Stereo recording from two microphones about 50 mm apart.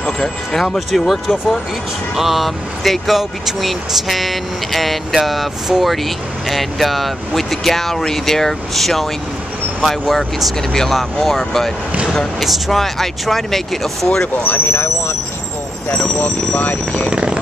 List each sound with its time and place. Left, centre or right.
0.0 s speech: centre
0.6 s speech: centre
14.0 s speech: centre
14.4 s speech: left
14.7 s speech: left
16.2 s speech: left
17.1 s a sound: centre